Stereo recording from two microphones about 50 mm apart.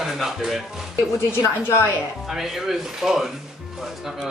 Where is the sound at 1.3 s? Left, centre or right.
Left.